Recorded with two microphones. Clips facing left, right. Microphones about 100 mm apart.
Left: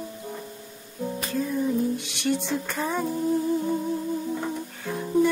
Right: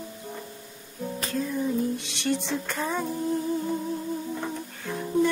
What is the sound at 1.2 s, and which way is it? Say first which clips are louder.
Music: left 2 dB; 5° left (ahead or behind).